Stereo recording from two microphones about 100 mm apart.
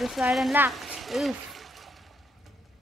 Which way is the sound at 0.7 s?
Centre (ahead or behind).